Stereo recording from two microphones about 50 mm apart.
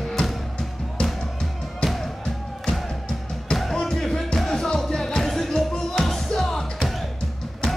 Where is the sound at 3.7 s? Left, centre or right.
Centre.